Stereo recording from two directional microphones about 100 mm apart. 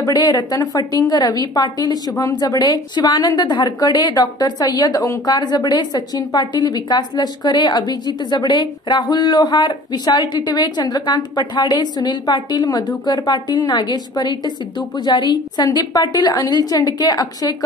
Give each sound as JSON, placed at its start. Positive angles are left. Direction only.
{"t": 0.0, "sound": "a woman's voice", "side_deg": 45}